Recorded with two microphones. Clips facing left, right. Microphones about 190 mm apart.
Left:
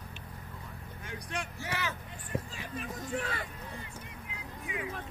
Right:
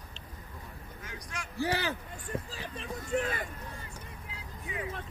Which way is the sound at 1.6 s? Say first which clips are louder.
Right 10 dB; 35° right (ahead or behind).